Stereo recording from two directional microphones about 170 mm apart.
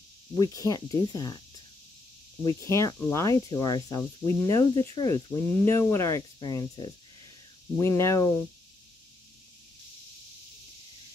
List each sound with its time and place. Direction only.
0.3 s speech: 20° left (ahead or behind)
2.4 s speech: 15° left (ahead or behind)